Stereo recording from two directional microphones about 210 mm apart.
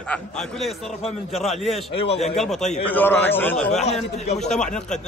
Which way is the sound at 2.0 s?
30° left (ahead or behind).